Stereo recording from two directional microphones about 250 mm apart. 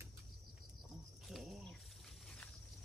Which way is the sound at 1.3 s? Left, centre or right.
Centre.